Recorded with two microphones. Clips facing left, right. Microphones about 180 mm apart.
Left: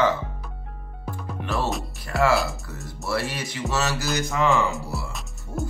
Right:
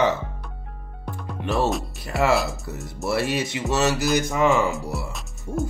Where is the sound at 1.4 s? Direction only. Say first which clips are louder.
Right 4 dB; 20° right (ahead or behind).